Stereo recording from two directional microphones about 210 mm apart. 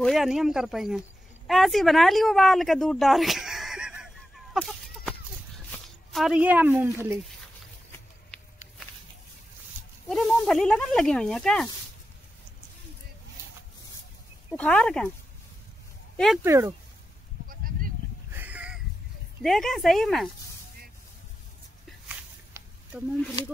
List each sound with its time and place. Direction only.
0.0 s speech: centre (ahead or behind)
4.6 s chicken: centre (ahead or behind)
6.1 s a woman's voice: 5° right (ahead or behind)
7.9 s a sound: 5° left (ahead or behind)
10.0 s speech: centre (ahead or behind)
14.6 s speech: 5° left (ahead or behind)
16.4 s a woman's voice: 15° right (ahead or behind)
17.5 s sheep: 45° right (ahead or behind)
18.3 s a sound: 10° right (ahead or behind)
19.4 s speech: centre (ahead or behind)
22.0 s walk: 5° right (ahead or behind)